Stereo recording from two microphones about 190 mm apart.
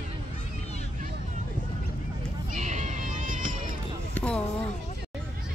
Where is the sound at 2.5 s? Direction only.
40° right (ahead or behind).